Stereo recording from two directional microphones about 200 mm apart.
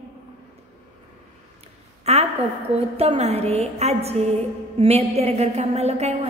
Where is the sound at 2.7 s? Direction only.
30° right (ahead or behind).